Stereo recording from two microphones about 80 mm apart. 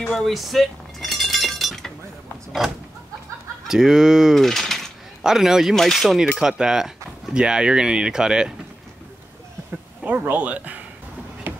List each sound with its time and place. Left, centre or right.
0.0 s chink: centre
2.6 s speech: centre
4.4 s mechanisms: centre
5.2 s speech: centre
10.0 s speech: right
11.5 s a sound: right